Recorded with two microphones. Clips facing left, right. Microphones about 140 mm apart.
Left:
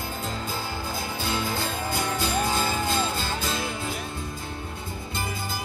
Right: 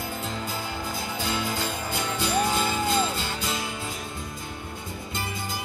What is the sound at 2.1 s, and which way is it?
Music, 35° left (ahead or behind).